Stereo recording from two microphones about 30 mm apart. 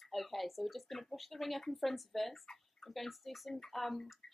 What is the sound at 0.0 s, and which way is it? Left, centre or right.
Speech, centre.